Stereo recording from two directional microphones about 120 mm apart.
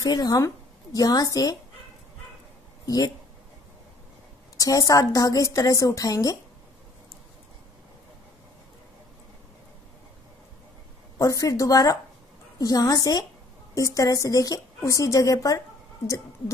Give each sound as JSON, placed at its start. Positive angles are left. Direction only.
{"t": 0.0, "sound": "a woman's voice", "side_deg": 30}
{"t": 4.6, "sound": "a woman's voice", "side_deg": 30}
{"t": 11.1, "sound": "a woman's voice", "side_deg": 30}